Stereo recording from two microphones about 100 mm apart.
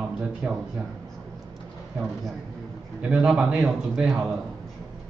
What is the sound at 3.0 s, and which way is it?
A man's voice, 10° right (ahead or behind).